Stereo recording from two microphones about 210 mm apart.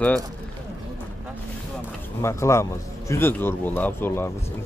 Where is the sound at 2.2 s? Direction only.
15° left (ahead or behind).